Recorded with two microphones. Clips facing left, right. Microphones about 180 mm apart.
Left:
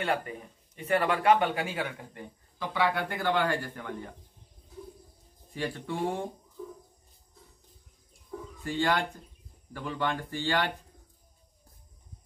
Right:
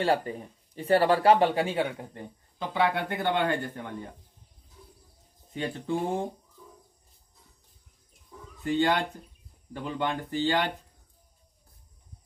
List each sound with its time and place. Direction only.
0.0 s speech: 30° right (ahead or behind)
5.5 s speech: 20° right (ahead or behind)
8.6 s speech: 20° right (ahead or behind)